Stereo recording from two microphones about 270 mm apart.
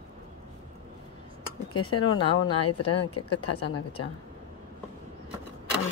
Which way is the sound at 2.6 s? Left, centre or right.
Left.